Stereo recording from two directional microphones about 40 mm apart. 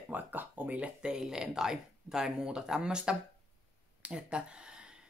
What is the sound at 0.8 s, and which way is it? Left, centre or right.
Speech, right.